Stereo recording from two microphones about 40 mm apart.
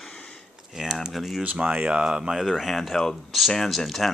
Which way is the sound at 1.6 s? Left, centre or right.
Right.